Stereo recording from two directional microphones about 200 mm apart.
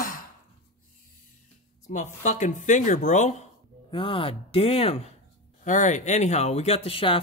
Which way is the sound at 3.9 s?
25° left (ahead or behind).